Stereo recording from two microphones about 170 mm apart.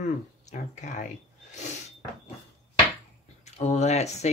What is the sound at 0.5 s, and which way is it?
Speech, 45° left (ahead or behind).